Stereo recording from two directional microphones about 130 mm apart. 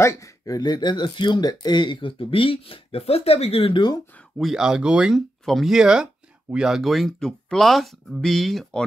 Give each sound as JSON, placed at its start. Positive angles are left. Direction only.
{"t": 0.0, "sound": "speech", "side_deg": 25}
{"t": 4.4, "sound": "speech", "side_deg": -5}